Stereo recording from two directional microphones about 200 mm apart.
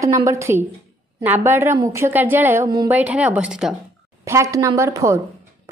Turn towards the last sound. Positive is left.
turn(degrees=-15)  # may be behind; listen again after turning